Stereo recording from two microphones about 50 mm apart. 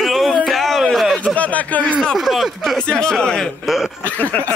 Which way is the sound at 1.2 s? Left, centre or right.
Left.